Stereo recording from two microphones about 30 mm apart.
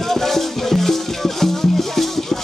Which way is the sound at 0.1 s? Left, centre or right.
Centre.